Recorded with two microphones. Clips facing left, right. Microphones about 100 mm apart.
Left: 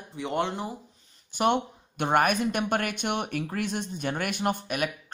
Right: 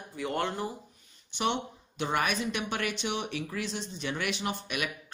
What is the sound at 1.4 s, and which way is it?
Speech, 55° left (ahead or behind).